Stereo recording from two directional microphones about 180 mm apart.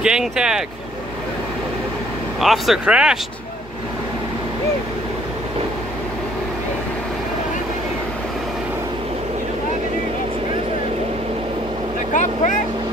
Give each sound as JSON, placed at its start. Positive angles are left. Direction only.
{"t": 0.0, "sound": "speech", "side_deg": -5}
{"t": 2.4, "sound": "speech", "side_deg": 0}
{"t": 12.1, "sound": "speech", "side_deg": 45}